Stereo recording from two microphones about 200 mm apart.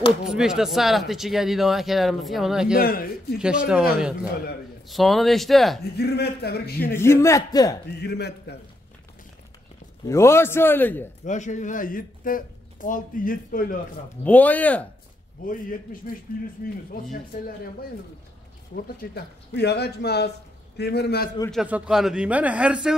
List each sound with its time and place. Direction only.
0.2 s speech: 5° right (ahead or behind)
2.8 s speech: 45° left (ahead or behind)
3.3 s speech: 5° right (ahead or behind)
4.8 s speech: centre (ahead or behind)
5.9 s speech: 55° left (ahead or behind)
7.0 s a man's voice: 15° left (ahead or behind)
8.0 s a man's voice: 55° left (ahead or behind)
10.0 s a man's voice: 15° left (ahead or behind)
11.2 s speech: 35° left (ahead or behind)
14.2 s a man's voice: 10° left (ahead or behind)
15.4 s speech: 45° left (ahead or behind)
19.1 s a man's voice: 55° left (ahead or behind)
21.5 s speech: 5° right (ahead or behind)